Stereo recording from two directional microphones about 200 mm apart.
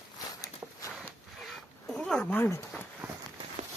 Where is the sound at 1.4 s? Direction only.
5° left (ahead or behind).